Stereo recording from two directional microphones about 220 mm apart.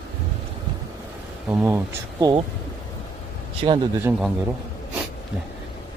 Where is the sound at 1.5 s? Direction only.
10° right (ahead or behind).